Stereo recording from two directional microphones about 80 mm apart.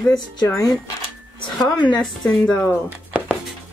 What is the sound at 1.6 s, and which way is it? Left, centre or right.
Speech, left.